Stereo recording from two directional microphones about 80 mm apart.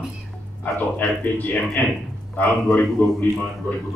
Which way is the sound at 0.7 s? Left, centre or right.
Left.